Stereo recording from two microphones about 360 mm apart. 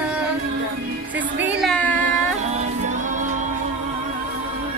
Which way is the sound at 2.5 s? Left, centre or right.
Centre.